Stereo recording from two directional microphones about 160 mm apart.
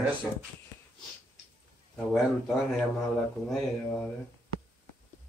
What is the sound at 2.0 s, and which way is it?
Speech, 5° left (ahead or behind).